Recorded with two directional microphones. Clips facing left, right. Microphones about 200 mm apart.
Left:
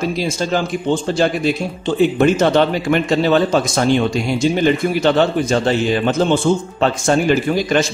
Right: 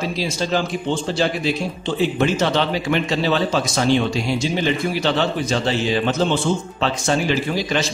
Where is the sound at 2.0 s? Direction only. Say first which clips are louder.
Left 6 dB; 50° left (ahead or behind).